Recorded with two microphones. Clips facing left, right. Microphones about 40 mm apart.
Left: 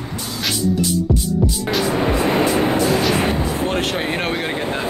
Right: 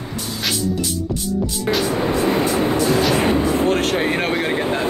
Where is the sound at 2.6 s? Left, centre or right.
Left.